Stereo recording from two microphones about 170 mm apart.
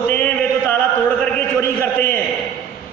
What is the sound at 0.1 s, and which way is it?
Mantra, 10° left (ahead or behind).